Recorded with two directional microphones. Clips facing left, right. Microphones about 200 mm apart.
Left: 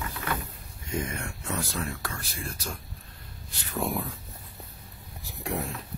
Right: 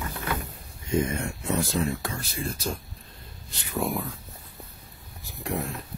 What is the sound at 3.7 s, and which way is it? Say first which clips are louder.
Speech: right 2 dB; centre (ahead or behind).